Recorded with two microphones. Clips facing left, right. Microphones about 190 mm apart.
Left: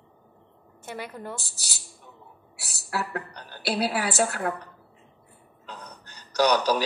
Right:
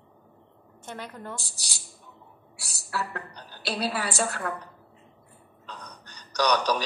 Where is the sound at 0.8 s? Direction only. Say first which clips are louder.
Left 2 dB; 10° left (ahead or behind).